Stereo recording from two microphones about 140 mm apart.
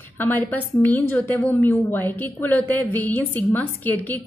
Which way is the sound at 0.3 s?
15° left (ahead or behind).